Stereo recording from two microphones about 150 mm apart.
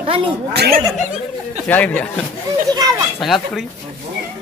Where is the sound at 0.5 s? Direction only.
90° right.